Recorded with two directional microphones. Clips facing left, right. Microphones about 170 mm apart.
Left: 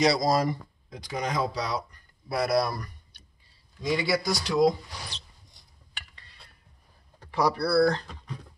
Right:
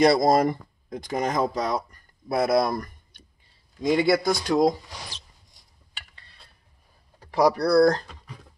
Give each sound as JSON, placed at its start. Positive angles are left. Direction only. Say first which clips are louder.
{"t": 0.0, "sound": "speech", "louder": "right 5 dB", "side_deg": -50}
{"t": 7.2, "sound": "speech", "louder": "right 5 dB", "side_deg": -45}